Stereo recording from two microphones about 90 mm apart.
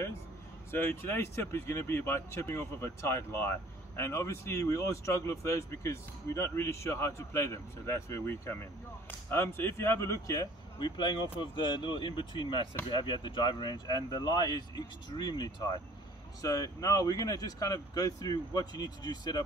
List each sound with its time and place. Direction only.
0.7 s speech: 25° left (ahead or behind)
11.0 s speech: 55° left (ahead or behind)